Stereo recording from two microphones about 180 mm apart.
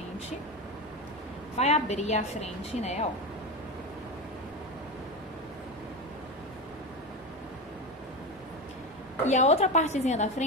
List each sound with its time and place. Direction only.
1.6 s a woman's voice: 40° left (ahead or behind)
9.2 s a woman's voice: 40° left (ahead or behind)